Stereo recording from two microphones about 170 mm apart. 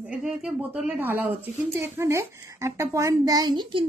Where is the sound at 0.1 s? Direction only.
10° right (ahead or behind).